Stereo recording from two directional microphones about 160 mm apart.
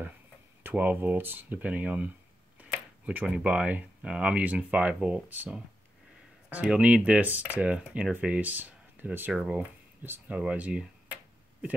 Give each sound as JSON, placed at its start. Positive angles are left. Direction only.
{"t": 0.7, "sound": "speech", "side_deg": -10}